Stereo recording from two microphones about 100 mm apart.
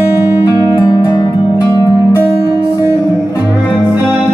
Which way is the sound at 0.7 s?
50° left (ahead or behind).